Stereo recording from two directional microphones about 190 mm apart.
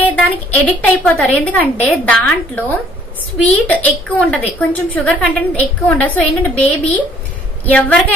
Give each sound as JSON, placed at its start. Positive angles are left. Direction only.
{"t": 0.0, "sound": "a woman's voice", "side_deg": 5}